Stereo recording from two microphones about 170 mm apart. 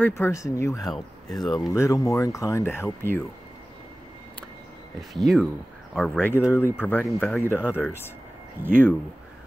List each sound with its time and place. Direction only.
0.0 s speech: 15° left (ahead or behind)
5.1 s speech: centre (ahead or behind)
6.3 s speech: 10° right (ahead or behind)
6.6 s speech: 10° left (ahead or behind)
7.3 s speech: 10° left (ahead or behind)
8.6 s speech: 50° right (ahead or behind)